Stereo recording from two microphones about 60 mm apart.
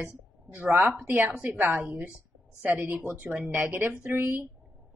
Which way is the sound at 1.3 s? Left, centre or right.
Right.